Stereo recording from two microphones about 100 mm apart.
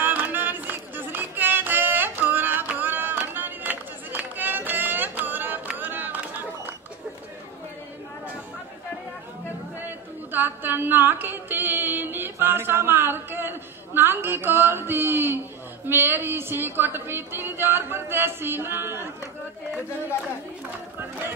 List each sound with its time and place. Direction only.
0.0 s music: 20° right (ahead or behind)
10.3 s a sound: 20° right (ahead or behind)
15.9 s speech: 20° right (ahead or behind)